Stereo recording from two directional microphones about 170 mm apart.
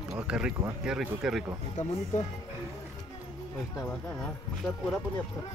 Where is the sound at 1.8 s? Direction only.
45° left (ahead or behind).